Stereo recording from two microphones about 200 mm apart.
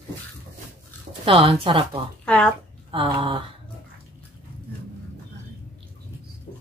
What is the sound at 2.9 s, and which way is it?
Speech, 25° right (ahead or behind).